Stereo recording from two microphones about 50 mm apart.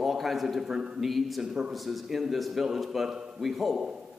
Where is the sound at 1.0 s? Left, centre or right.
Centre.